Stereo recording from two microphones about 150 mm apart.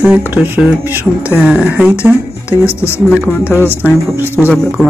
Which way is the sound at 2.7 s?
15° left (ahead or behind).